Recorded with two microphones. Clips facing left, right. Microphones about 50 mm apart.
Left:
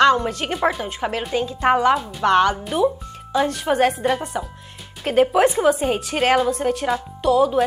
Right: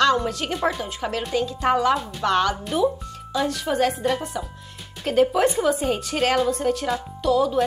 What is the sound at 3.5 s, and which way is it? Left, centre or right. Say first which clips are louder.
Speech: left 2 dB; left.